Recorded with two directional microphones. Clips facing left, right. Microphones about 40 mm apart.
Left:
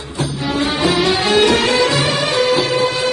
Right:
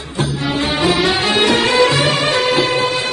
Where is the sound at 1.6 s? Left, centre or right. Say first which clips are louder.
Right 2 dB; right.